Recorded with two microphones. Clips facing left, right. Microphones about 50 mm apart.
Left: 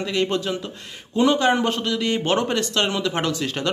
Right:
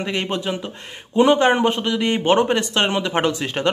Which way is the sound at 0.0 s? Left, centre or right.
Right.